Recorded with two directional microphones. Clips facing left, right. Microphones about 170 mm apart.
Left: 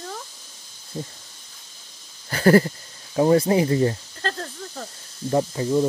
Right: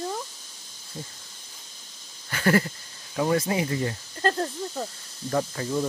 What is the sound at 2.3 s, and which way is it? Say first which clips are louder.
Goat: left 7 dB; 35° left (ahead or behind).